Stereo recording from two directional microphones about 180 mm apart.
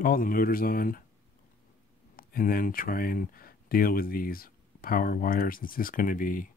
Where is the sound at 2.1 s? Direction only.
50° left (ahead or behind).